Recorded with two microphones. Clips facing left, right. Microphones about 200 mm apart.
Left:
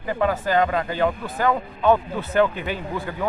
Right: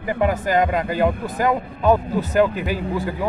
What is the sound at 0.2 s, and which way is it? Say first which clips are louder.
Speech: right 1 dB; 15° right (ahead or behind).